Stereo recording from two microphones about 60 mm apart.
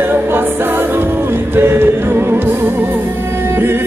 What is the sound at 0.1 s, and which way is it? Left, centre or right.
Music, right.